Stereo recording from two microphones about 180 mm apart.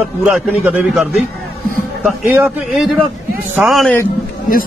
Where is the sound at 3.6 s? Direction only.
Centre (ahead or behind).